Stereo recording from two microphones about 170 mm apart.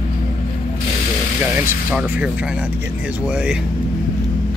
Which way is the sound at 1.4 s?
10° right (ahead or behind).